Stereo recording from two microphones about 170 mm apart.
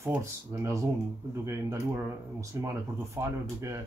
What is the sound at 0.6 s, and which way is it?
Speech, 15° right (ahead or behind).